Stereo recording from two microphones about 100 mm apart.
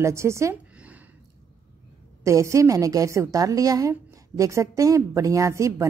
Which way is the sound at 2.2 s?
30° right (ahead or behind).